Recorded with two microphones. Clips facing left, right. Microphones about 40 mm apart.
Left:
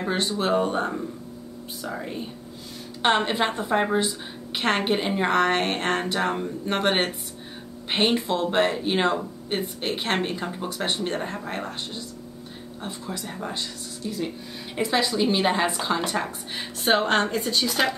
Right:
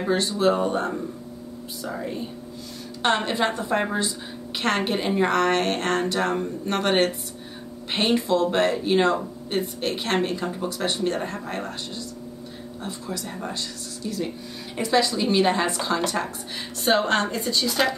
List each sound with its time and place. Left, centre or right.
0.1 s a woman's voice: left
3.0 s a woman's voice: left
14.8 s a woman's voice: left